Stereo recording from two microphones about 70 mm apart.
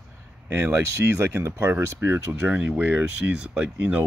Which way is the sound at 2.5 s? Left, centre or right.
Right.